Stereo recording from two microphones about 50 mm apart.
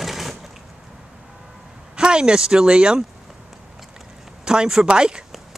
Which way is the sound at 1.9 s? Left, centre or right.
Centre.